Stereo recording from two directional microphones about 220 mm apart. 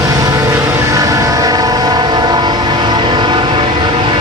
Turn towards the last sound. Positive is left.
turn(degrees=-20)  # may be behind; listen again after turning